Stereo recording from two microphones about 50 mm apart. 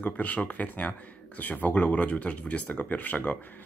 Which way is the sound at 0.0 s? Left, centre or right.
Left.